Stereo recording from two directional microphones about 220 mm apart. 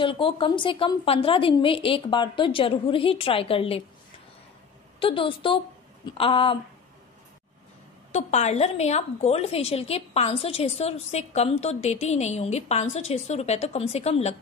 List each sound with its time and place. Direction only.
0.0 s a woman's voice: 25° left (ahead or behind)
5.0 s a woman's voice: 25° left (ahead or behind)
8.1 s a woman's voice: 30° left (ahead or behind)